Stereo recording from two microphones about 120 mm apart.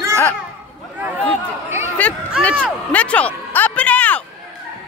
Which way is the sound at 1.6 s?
20° right (ahead or behind).